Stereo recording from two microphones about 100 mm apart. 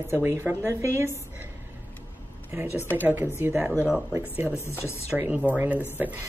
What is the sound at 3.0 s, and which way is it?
Speech, 20° right (ahead or behind).